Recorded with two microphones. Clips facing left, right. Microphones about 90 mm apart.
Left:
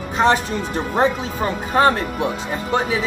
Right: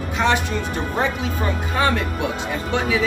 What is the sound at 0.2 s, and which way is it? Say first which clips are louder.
Speech: left 3 dB; 35° left (ahead or behind).